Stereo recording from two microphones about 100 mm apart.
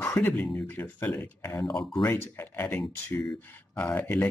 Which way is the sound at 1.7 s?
5° left (ahead or behind).